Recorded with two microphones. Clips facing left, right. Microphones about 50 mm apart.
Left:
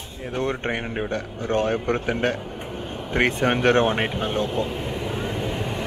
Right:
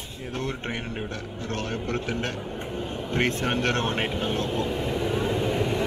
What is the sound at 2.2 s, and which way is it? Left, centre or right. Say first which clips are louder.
Speech: left 7 dB; centre.